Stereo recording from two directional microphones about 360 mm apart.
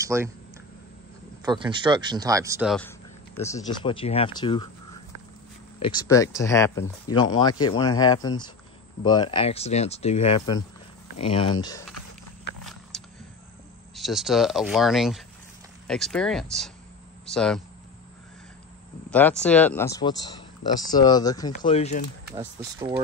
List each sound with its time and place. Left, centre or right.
0.0 s speech: centre
1.4 s speech: centre
5.8 s speech: centre
13.9 s speech: centre
19.0 s speech: centre
22.3 s speech: centre